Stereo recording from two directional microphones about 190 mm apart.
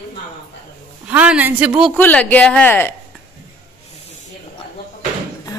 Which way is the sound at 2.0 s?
10° left (ahead or behind).